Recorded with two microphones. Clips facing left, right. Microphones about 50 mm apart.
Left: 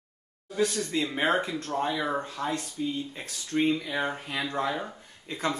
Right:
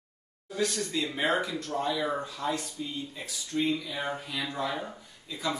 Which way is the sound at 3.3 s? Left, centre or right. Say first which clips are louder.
Left 3 dB; left.